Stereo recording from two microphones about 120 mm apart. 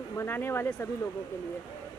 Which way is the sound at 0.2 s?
20° left (ahead or behind).